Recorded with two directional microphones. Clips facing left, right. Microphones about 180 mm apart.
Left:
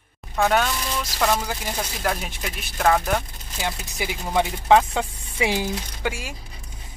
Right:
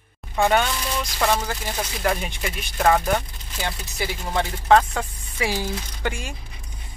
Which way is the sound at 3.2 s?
10° left (ahead or behind).